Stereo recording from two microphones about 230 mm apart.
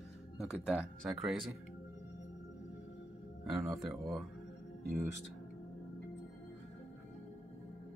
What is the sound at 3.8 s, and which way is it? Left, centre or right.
Speech, centre.